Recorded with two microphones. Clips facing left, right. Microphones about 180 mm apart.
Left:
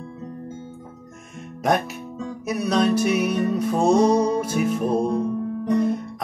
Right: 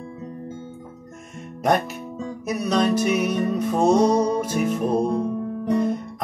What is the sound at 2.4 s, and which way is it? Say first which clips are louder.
Music: left 1 dB; centre (ahead or behind).